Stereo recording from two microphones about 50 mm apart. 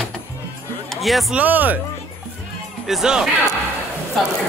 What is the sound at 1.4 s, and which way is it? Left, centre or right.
Speech, right.